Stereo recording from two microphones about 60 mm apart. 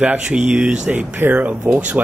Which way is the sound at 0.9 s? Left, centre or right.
Right.